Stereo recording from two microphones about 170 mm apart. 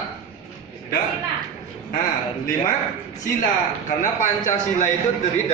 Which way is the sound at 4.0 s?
50° left (ahead or behind).